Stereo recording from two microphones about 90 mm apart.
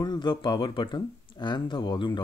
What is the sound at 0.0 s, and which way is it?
Speech, 55° left (ahead or behind).